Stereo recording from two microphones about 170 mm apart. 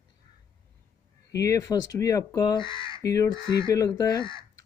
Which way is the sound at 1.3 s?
20° left (ahead or behind).